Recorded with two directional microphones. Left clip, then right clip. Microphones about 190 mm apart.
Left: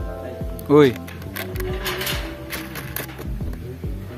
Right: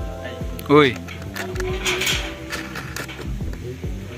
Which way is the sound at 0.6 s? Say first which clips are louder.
Even; 10° left (ahead or behind).